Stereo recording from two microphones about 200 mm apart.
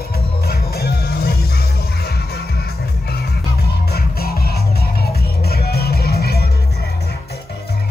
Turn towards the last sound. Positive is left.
turn(degrees=55)  # may be behind; listen again after turning